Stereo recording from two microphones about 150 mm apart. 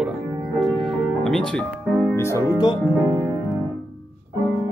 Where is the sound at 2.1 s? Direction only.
20° left (ahead or behind).